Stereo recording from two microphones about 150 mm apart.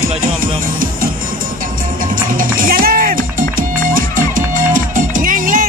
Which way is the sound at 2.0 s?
65° right (ahead or behind).